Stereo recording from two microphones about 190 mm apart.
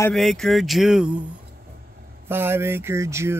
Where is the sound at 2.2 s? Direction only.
10° right (ahead or behind).